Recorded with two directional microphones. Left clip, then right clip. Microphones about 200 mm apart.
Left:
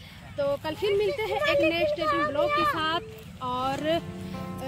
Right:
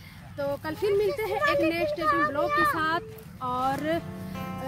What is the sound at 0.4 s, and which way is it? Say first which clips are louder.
Speech: left 2 dB; 15° right (ahead or behind).